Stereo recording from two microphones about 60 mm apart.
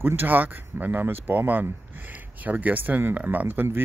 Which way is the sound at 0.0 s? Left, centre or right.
Right.